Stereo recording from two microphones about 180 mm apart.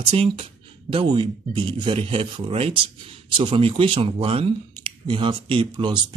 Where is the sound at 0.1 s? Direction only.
30° right (ahead or behind).